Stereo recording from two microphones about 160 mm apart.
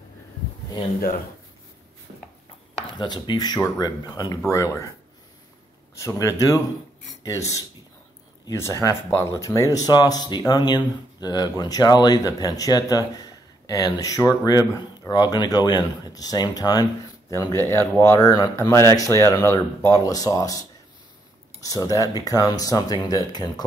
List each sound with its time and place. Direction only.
2.1 s a sound: 50° right (ahead or behind)
2.9 s speech: 25° left (ahead or behind)
5.9 s speech: 20° left (ahead or behind)